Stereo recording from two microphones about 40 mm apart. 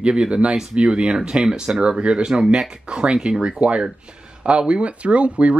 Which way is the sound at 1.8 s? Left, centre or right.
Right.